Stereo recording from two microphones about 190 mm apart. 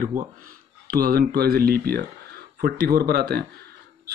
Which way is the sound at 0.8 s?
50° right (ahead or behind).